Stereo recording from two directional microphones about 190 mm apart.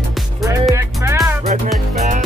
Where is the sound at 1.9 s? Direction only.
40° right (ahead or behind).